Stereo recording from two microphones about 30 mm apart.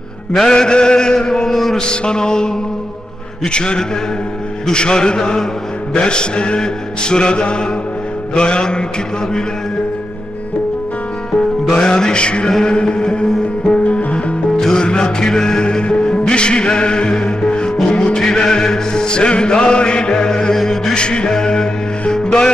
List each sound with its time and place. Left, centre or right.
0.4 s music: left
1.5 s a sound: centre
1.8 s music: left
11.7 s music: left
13.9 s music: left; by 15.6 s centre
15.6 s music: left
17.8 s music: left
18.1 s music: left
20.5 s chant: centre
20.9 s music: left
21.3 s a capella: left
22.1 s music: left